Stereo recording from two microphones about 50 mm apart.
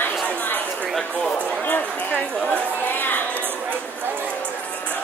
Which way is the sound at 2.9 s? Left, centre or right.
Left.